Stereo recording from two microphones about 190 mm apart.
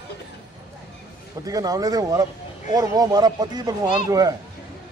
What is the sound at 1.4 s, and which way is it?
A man's voice, 20° right (ahead or behind).